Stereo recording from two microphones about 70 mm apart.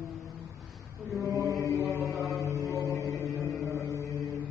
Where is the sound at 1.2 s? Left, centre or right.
Right.